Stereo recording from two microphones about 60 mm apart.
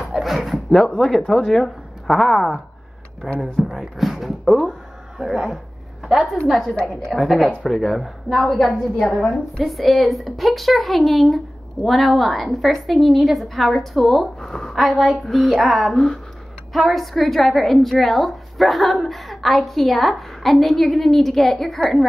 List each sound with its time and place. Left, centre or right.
0.1 s a sound: centre
0.7 s a woman's voice: centre
3.7 s a woman's voice: centre